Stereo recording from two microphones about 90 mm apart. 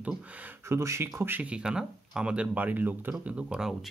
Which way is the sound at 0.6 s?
30° right (ahead or behind).